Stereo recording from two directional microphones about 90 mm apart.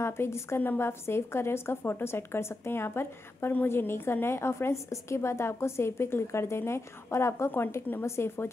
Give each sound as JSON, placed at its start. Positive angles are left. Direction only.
{"t": 0.0, "sound": "a woman's voice", "side_deg": 30}